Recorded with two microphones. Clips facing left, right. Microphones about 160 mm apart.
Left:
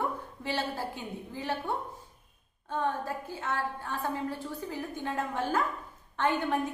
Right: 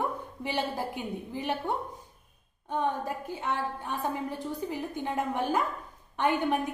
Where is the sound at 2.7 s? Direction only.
15° right (ahead or behind).